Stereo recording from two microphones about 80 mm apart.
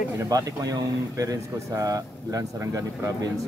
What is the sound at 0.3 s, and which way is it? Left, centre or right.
Speech, right.